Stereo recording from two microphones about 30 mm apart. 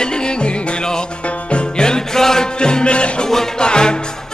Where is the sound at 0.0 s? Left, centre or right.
Left.